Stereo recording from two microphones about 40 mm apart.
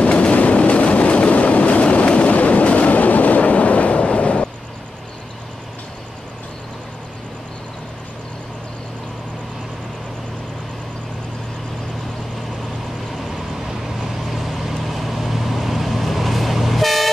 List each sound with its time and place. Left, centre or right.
0.0 s train: left
13.9 s vehicle: centre